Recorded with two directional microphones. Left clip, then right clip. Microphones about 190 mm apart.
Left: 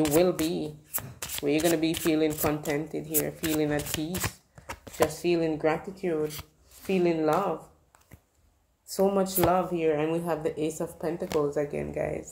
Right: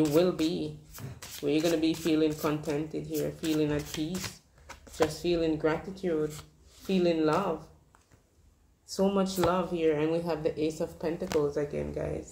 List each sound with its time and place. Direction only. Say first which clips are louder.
0.0 s speech: left 2 dB; 30° left (ahead or behind)
8.8 s speech: left 3 dB; 30° left (ahead or behind)